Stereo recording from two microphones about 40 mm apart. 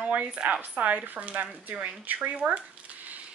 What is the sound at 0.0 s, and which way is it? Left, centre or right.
Speech, right.